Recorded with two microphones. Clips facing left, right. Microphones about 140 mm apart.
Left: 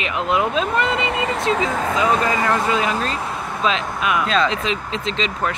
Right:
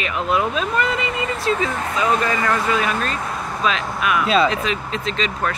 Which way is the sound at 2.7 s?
25° left (ahead or behind).